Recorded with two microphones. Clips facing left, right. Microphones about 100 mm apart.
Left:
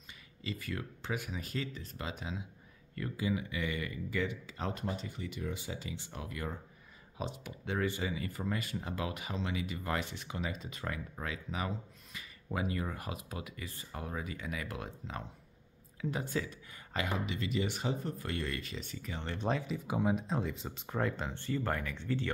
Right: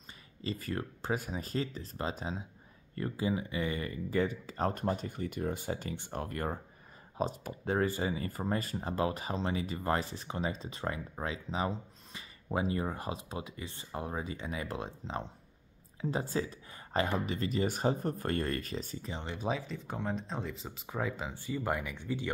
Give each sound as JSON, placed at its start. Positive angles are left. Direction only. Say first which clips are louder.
{"t": 0.4, "sound": "speech", "louder": "right 4 dB", "side_deg": -35}
{"t": 19.2, "sound": "speech", "louder": "left 1 dB", "side_deg": -5}